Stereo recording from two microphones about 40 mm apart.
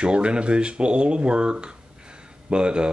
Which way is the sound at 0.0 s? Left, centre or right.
Right.